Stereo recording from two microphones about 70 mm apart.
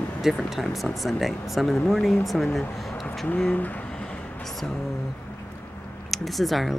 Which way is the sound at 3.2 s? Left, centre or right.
Centre.